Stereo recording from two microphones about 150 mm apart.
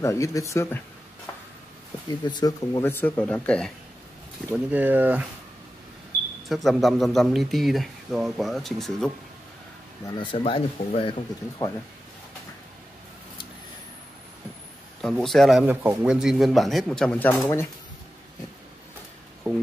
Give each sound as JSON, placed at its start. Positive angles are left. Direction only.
{"t": 0.0, "sound": "speech", "side_deg": 20}
{"t": 2.0, "sound": "speech", "side_deg": 25}
{"t": 2.9, "sound": "speech", "side_deg": 10}
{"t": 4.5, "sound": "speech", "side_deg": -10}
{"t": 6.5, "sound": "speech", "side_deg": 0}
{"t": 10.0, "sound": "speech", "side_deg": 30}
{"t": 15.0, "sound": "speech", "side_deg": 5}
{"t": 15.6, "sound": "speech", "side_deg": -15}
{"t": 16.1, "sound": "speech", "side_deg": -5}